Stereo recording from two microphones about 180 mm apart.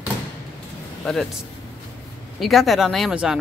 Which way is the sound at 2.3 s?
Centre (ahead or behind).